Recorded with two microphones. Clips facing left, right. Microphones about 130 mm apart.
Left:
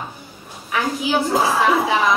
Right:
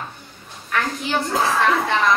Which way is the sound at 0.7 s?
10° left (ahead or behind).